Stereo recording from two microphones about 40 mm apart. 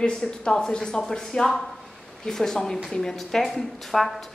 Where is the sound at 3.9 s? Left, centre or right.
Centre.